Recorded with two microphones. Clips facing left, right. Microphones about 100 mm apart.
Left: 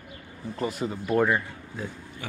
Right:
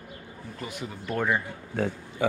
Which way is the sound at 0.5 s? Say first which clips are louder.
Left 8 dB; 40° left (ahead or behind).